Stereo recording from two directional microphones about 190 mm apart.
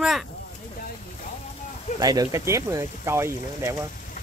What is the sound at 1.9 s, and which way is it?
Speech, 20° right (ahead or behind).